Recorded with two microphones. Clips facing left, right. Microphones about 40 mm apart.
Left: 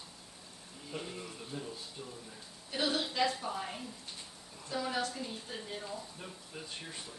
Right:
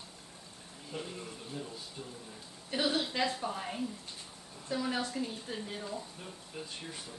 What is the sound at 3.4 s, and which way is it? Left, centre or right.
Speech, centre.